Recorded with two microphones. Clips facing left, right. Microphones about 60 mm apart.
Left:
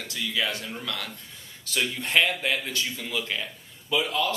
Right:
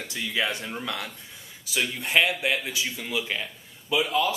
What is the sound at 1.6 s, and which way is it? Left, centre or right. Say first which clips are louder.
Speech: even; centre.